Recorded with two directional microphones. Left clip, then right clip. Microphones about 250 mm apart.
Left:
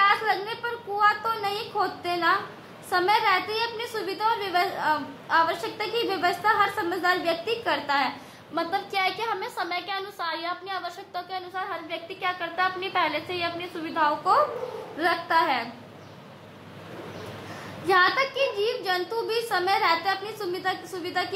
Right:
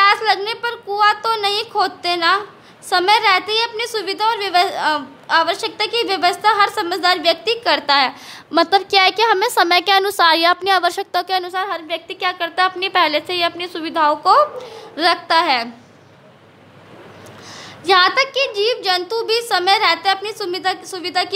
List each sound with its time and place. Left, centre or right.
0.0 s a sound: right
1.2 s a sound: right
2.9 s a woman's voice: right
4.4 s a woman's voice: right
4.7 s a woman's voice: right
17.8 s a woman's voice: right